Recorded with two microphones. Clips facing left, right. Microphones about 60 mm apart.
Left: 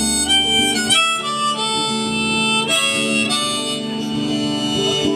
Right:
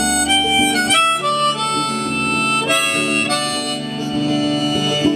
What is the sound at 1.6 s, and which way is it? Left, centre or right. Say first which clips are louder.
Harmonica: right 2 dB; right.